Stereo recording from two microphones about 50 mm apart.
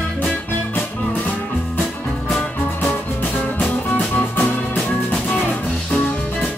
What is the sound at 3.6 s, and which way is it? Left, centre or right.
Music, left.